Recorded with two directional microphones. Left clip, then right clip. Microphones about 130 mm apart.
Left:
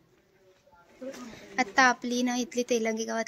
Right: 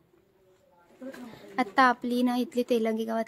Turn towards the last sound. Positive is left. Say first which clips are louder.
# right 1 dB
turn(degrees=-20)  # may be behind; listen again after turning